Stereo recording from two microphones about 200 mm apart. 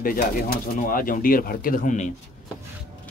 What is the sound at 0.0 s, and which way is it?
Speech, 45° left (ahead or behind).